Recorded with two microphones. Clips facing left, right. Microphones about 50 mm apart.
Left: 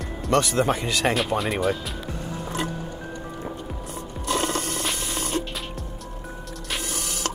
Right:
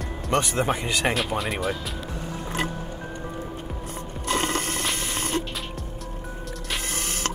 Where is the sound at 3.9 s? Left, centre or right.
Right.